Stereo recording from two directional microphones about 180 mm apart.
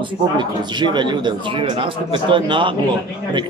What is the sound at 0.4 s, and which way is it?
Speech, 25° right (ahead or behind).